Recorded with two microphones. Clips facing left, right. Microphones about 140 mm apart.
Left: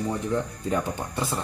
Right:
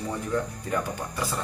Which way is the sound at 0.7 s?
25° left (ahead or behind).